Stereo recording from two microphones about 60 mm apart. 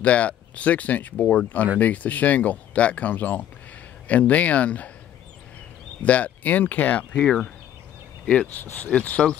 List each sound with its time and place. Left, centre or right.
0.0 s speech: left
6.0 s speech: left